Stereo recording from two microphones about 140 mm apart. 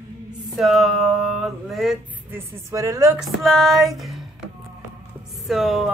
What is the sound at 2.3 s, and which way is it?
Speech, 20° right (ahead or behind).